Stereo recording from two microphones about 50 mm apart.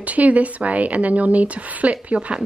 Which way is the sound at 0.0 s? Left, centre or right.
Right.